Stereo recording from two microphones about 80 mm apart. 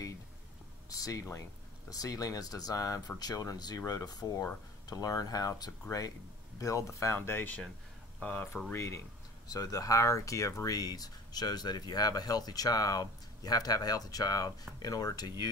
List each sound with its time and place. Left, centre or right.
0.8 s speech: left
7.2 s speech: left
8.7 s speech: left